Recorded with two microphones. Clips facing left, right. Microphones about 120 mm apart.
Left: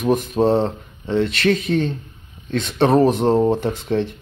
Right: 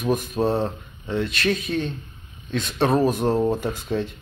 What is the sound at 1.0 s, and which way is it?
Speech, 90° left.